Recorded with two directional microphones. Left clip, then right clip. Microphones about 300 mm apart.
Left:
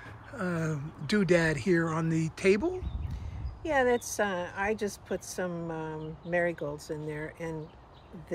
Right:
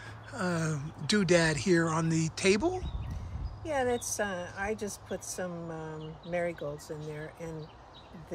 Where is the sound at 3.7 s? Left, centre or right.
Left.